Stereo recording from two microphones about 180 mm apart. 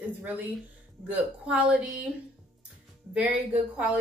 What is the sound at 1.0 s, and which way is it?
Speech, 5° right (ahead or behind).